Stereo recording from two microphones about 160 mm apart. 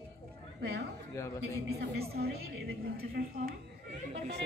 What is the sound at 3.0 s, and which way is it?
Speech, 70° right (ahead or behind).